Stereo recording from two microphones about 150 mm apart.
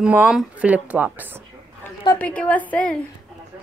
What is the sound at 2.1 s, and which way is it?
Speech, 10° left (ahead or behind).